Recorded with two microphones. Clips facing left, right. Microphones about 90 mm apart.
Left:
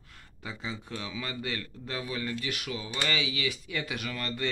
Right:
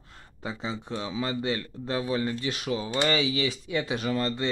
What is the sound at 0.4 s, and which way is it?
Speech, 30° right (ahead or behind).